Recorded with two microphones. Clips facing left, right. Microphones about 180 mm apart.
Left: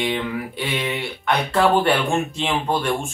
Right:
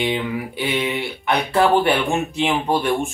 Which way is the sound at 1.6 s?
Centre (ahead or behind).